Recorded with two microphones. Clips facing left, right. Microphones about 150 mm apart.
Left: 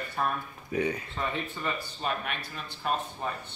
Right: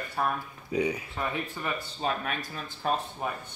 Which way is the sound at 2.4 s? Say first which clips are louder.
Right 2 dB; 45° right (ahead or behind).